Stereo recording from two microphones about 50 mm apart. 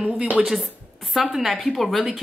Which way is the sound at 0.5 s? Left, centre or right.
Centre.